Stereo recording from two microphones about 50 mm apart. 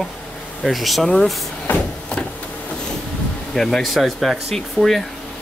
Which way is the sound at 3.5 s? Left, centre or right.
Centre.